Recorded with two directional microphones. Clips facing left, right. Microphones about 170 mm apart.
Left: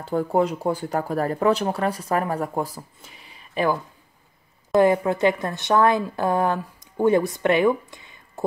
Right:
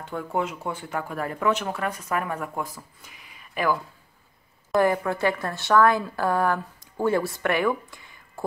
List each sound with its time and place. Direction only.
0.0 s speech: 35° left (ahead or behind)
4.7 s a woman's voice: 20° left (ahead or behind)